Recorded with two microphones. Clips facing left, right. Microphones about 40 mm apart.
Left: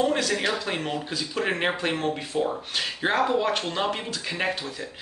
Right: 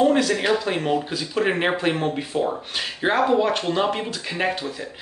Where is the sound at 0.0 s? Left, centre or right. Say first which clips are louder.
Right 5 dB; centre.